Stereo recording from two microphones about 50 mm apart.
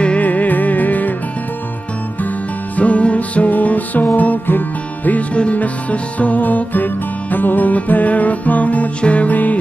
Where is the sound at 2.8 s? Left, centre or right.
Left.